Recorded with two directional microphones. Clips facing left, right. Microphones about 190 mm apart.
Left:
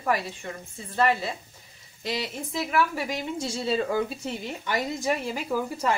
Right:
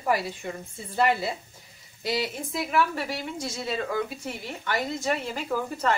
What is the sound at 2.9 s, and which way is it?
Speech, 15° left (ahead or behind).